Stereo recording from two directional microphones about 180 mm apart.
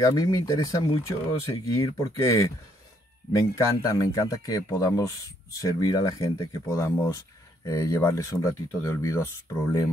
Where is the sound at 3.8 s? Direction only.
20° left (ahead or behind).